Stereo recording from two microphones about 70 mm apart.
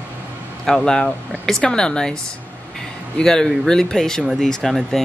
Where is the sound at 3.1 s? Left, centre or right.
Centre.